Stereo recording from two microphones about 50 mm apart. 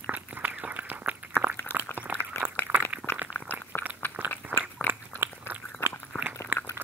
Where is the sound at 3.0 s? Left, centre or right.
Right.